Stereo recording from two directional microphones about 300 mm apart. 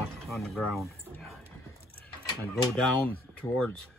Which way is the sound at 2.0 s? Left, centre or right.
Centre.